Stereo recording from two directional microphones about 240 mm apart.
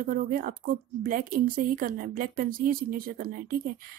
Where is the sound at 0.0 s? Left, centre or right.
Right.